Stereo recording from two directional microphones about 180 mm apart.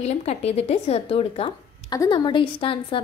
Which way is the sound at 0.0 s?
35° left (ahead or behind).